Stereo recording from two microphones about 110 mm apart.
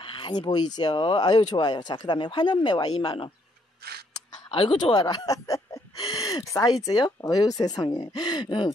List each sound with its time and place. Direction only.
0.0 s speech: 45° left (ahead or behind)
4.5 s speech: 55° left (ahead or behind)
4.8 s speech: 40° left (ahead or behind)